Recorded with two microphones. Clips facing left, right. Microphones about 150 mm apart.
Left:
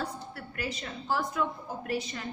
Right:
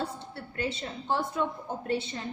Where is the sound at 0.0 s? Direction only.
25° right (ahead or behind).